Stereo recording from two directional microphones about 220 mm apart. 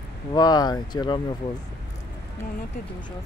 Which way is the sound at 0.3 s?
20° left (ahead or behind).